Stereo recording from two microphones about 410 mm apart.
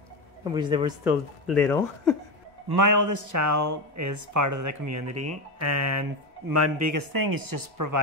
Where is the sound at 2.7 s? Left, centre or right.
Right.